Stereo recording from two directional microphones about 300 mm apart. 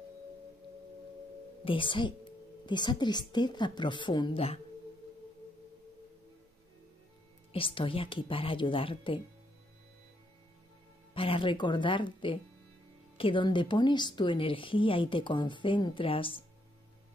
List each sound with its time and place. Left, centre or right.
1.6 s a woman's voice: centre
7.5 s a woman's voice: centre
11.1 s a woman's voice: centre